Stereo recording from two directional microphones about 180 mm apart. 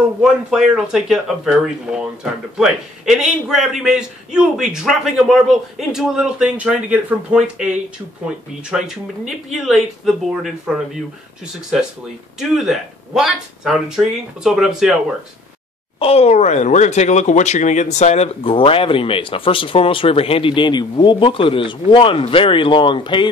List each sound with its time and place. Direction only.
0.2 s a man's voice: 5° right (ahead or behind)
8.6 s a man's voice: 5° right (ahead or behind)
12.4 s a man's voice: centre (ahead or behind)
16.0 s speech: 35° left (ahead or behind)